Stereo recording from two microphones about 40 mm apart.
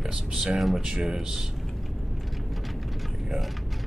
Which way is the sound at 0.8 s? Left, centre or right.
Centre.